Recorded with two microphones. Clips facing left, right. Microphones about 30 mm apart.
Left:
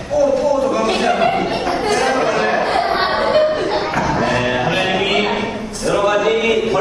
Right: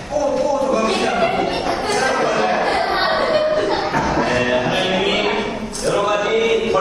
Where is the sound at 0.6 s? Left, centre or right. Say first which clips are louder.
Left 1 dB; centre.